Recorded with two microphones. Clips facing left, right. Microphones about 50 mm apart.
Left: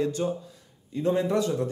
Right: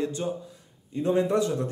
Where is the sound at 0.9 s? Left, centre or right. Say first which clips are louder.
Right 1 dB; right.